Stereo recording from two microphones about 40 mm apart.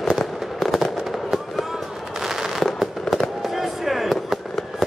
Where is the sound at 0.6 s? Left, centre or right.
Centre.